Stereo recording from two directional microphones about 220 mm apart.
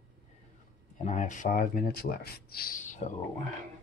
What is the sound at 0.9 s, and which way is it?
Speech, 35° left (ahead or behind).